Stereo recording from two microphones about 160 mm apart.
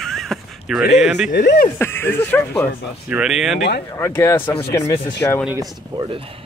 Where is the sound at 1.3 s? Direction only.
80° left.